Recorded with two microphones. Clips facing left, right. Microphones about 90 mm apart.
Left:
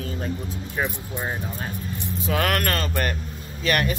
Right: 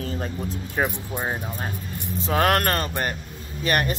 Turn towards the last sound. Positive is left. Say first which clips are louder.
# even
turn(degrees=-30)  # may be behind; listen again after turning